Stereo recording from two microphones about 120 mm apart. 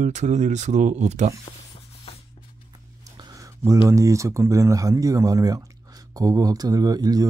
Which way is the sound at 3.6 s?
25° right (ahead or behind).